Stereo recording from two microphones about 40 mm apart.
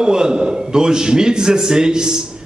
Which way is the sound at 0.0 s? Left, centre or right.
Centre.